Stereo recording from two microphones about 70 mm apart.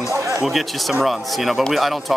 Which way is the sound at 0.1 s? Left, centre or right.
Right.